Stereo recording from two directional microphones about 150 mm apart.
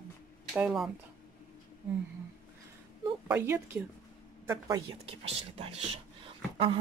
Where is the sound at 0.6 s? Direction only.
5° right (ahead or behind).